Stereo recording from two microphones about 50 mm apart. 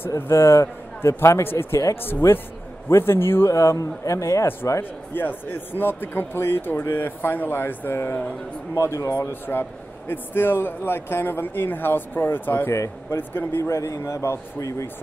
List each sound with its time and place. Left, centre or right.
0.1 s a man's voice: left
1.5 s a man's voice: left
2.9 s a man's voice: left
3.4 s speech: left
5.1 s a man's voice: left
8.7 s speech: left
9.3 s a man's voice: left
13.6 s speech: left